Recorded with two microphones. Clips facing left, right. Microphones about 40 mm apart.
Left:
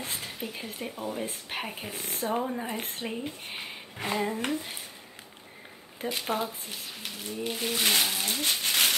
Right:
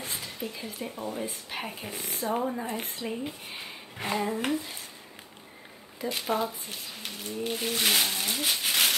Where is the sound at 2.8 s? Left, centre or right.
Left.